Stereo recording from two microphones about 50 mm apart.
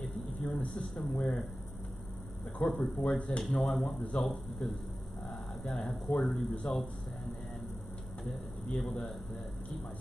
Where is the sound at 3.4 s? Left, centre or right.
Centre.